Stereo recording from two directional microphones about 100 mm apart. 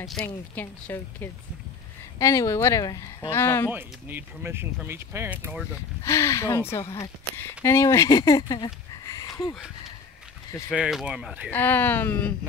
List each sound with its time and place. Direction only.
0.2 s speech: 5° left (ahead or behind)
0.6 s speech: 20° left (ahead or behind)
2.1 s speech: 30° left (ahead or behind)
3.3 s speech: 25° left (ahead or behind)
3.7 s speech: 20° right (ahead or behind)
5.3 s speech: 15° right (ahead or behind)
6.0 s speech: 30° left (ahead or behind)
10.7 s speech: 5° right (ahead or behind)
11.5 s speech: 20° left (ahead or behind)